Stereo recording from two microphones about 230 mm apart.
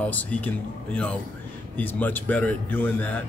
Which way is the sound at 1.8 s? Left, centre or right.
Centre.